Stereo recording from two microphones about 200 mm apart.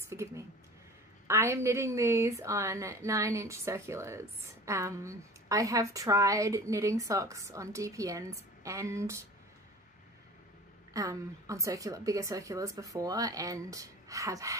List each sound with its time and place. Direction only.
0.1 s a woman's voice: 15° right (ahead or behind)
10.9 s a woman's voice: 15° right (ahead or behind)